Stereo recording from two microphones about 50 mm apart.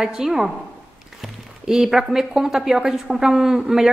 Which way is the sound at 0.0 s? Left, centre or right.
Centre.